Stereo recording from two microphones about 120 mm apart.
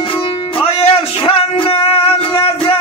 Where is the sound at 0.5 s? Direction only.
55° left (ahead or behind).